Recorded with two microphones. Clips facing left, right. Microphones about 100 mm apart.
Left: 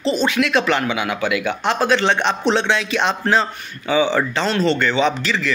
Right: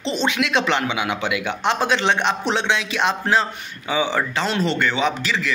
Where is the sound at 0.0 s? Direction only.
20° right (ahead or behind).